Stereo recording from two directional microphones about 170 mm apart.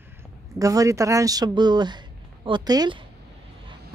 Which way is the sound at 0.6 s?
20° right (ahead or behind).